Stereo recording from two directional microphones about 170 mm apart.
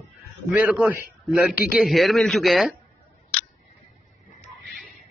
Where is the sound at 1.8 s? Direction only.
Centre (ahead or behind).